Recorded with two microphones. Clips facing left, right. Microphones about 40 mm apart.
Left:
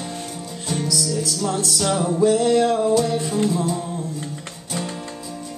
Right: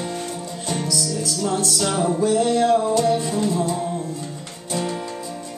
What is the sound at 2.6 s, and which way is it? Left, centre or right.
Music, centre.